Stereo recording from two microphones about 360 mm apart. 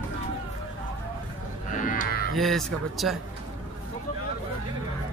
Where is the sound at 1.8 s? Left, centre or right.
Left.